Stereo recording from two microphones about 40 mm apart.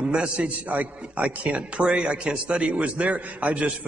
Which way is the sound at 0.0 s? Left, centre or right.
Right.